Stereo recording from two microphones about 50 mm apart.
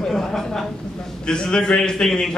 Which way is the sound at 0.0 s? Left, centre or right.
Centre.